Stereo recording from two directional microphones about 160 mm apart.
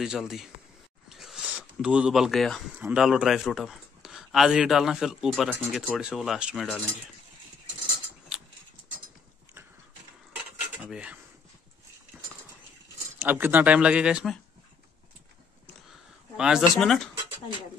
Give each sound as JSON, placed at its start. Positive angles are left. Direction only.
{"t": 0.0, "sound": "speech", "side_deg": -5}
{"t": 1.0, "sound": "a sound", "side_deg": 0}
{"t": 2.8, "sound": "speech", "side_deg": -5}
{"t": 8.3, "sound": "a sound", "side_deg": -5}
{"t": 10.8, "sound": "speech", "side_deg": -5}
{"t": 12.1, "sound": "cutlery", "side_deg": -15}
{"t": 13.2, "sound": "speech", "side_deg": -10}
{"t": 16.3, "sound": "speech", "side_deg": -5}